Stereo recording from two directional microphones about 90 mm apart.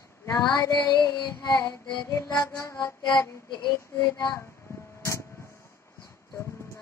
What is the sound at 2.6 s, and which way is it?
Female singing, 30° left (ahead or behind).